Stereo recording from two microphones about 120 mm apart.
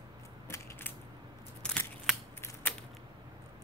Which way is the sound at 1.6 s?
5° left (ahead or behind).